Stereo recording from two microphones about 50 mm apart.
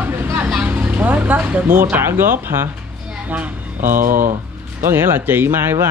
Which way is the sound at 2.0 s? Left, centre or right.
Right.